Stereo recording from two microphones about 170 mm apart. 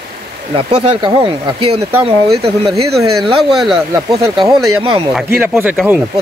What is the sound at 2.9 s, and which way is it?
Speech, centre (ahead or behind).